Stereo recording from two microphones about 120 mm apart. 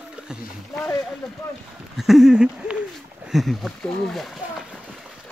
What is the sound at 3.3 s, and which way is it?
Speech, centre (ahead or behind).